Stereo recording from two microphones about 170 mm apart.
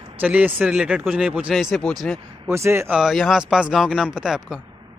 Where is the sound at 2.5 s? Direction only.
15° right (ahead or behind).